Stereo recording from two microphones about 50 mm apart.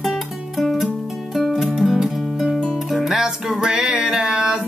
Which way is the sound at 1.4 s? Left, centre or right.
Centre.